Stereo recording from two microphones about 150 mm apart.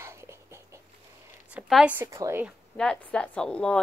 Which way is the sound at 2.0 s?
20° right (ahead or behind).